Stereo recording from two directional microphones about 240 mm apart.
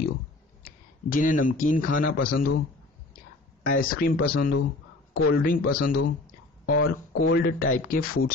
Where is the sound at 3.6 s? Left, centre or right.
Left.